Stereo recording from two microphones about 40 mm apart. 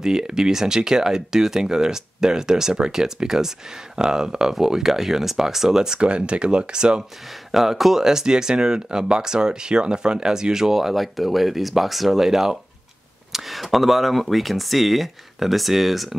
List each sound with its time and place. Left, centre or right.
0.0 s speech: centre
5.9 s speech: right
7.5 s speech: centre